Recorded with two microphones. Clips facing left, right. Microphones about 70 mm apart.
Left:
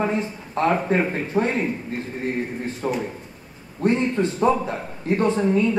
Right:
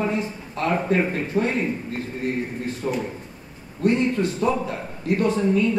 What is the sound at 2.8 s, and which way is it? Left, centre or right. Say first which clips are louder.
Speech: left 1 dB; centre.